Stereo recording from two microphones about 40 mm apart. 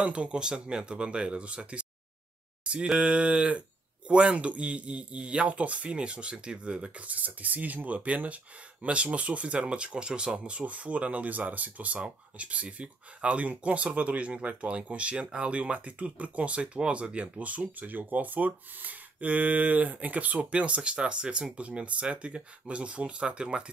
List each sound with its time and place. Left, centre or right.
0.0 s speech: right
2.6 s a sound: right
3.0 s speech: right
7.1 s speech: right